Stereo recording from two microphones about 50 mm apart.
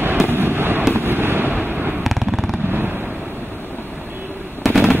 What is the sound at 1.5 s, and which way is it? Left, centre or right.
Fireworks, right.